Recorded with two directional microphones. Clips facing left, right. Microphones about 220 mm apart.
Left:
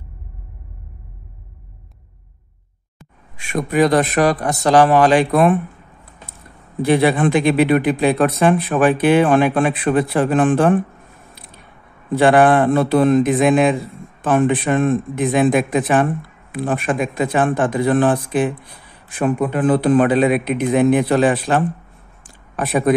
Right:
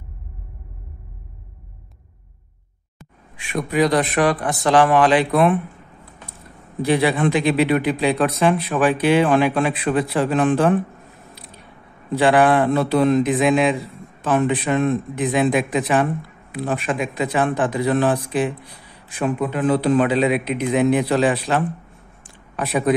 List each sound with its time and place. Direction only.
3.3 s speech: 45° left (ahead or behind)
6.8 s speech: 50° left (ahead or behind)
12.1 s speech: 50° left (ahead or behind)
22.2 s a sound: 50° left (ahead or behind)